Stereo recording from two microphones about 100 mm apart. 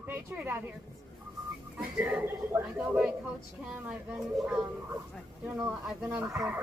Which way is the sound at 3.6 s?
5° right (ahead or behind).